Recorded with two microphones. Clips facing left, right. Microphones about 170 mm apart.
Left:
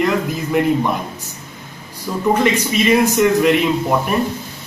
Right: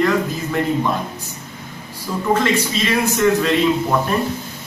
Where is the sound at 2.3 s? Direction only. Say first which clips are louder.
Left 2 dB; 15° left (ahead or behind).